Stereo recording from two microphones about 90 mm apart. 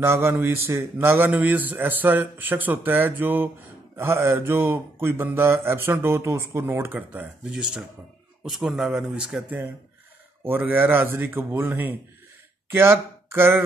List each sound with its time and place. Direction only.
0.0 s a man's voice: 30° right (ahead or behind); by 9.6 s 10° right (ahead or behind)
10.4 s a man's voice: 25° right (ahead or behind)